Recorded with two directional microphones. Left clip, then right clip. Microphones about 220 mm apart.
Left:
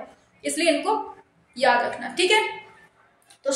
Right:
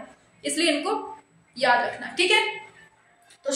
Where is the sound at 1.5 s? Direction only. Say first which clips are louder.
Left 1 dB; 15° left (ahead or behind).